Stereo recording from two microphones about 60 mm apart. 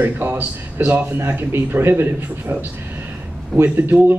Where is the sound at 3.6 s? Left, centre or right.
Right.